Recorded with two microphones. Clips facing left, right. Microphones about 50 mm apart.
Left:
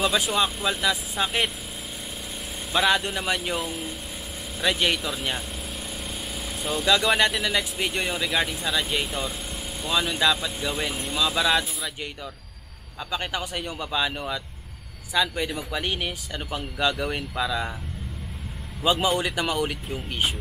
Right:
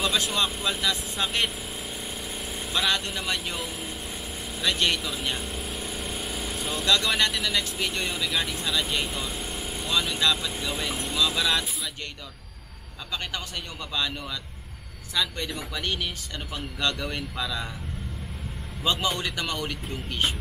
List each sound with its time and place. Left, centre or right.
0.0 s speech: centre
2.7 s speech: centre
6.5 s speech: centre
6.9 s speech: centre
13.1 s speech: centre
18.8 s speech: centre